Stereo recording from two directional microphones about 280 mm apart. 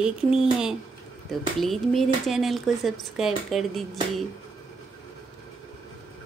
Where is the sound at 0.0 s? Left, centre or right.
Centre.